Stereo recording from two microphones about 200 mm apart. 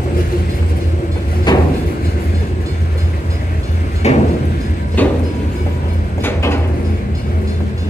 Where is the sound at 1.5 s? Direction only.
20° left (ahead or behind).